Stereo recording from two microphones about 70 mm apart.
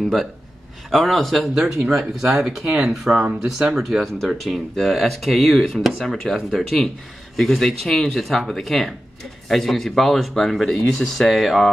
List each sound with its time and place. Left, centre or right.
0.0 s speech: centre
2.6 s speech: centre
2.9 s speech: centre